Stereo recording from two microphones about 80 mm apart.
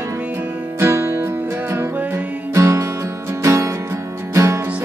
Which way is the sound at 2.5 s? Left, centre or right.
Right.